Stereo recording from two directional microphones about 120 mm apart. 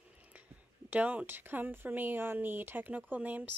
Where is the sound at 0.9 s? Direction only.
10° right (ahead or behind).